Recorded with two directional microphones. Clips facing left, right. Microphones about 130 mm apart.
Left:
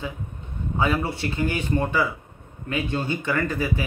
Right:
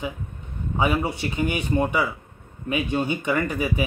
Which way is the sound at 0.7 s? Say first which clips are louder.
Right 1 dB; 15° right (ahead or behind).